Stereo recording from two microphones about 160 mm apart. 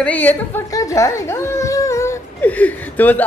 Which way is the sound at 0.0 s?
10° left (ahead or behind).